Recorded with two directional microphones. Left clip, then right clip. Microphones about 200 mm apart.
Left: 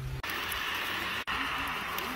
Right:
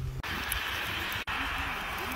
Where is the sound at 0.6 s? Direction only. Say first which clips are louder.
Even; 30° right (ahead or behind).